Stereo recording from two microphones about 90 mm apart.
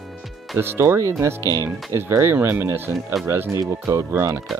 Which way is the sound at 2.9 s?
Centre (ahead or behind).